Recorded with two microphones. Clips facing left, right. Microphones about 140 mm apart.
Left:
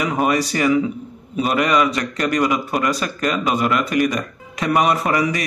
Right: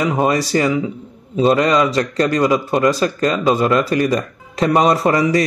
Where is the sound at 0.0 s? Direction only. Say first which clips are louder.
Right 2 dB; 30° right (ahead or behind).